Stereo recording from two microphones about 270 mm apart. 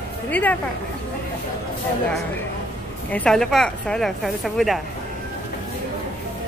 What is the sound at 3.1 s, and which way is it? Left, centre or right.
A woman's voice, centre.